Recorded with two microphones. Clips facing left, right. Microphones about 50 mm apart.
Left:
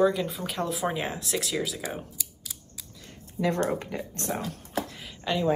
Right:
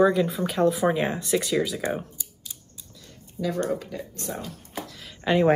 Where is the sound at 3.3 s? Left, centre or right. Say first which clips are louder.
Left 1 dB; left.